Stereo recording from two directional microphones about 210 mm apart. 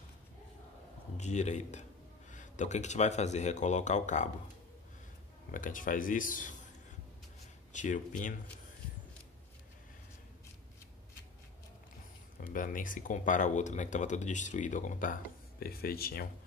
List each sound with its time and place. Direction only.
1.1 s speech: 35° left (ahead or behind)
5.5 s speech: 40° left (ahead or behind)
7.7 s speech: 35° left (ahead or behind)
12.5 s speech: 40° left (ahead or behind)